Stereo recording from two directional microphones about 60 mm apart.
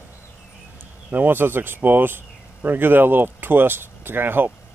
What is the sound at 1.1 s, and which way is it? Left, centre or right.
Speech, right.